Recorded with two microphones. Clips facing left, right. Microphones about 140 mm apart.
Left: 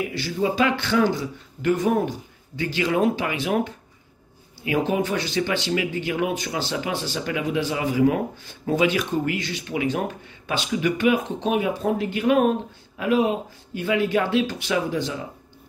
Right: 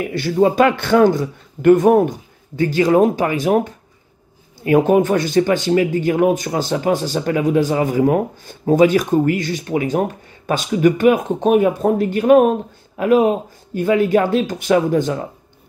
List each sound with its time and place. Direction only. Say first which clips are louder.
0.1 s speech: right 9 dB; 55° right (ahead or behind)